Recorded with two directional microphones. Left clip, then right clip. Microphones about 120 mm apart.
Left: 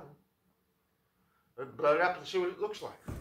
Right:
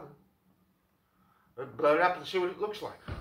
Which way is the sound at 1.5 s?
Centre (ahead or behind).